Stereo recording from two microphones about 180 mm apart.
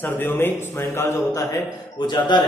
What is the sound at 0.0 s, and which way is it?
A man's voice, 10° left (ahead or behind).